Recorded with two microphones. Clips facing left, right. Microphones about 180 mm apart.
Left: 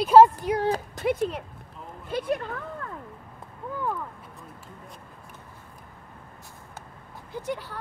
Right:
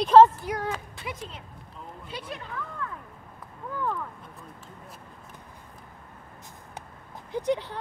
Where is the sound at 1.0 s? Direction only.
55° left (ahead or behind).